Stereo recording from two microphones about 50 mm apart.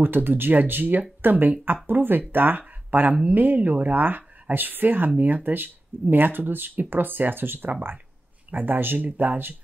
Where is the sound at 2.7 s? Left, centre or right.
Right.